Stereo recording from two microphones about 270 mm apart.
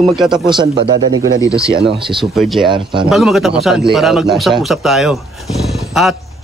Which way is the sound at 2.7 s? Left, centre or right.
Centre.